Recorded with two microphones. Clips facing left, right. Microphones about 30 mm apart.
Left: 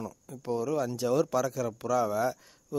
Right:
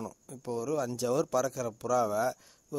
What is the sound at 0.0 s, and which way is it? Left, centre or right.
Speech, centre.